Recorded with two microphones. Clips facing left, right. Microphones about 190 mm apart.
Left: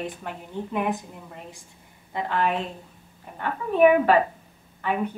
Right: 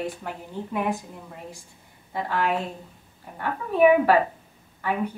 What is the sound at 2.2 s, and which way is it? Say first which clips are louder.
A woman's voice: even; 5° right (ahead or behind).